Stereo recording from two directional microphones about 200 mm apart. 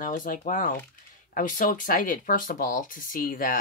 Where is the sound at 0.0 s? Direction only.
40° left (ahead or behind).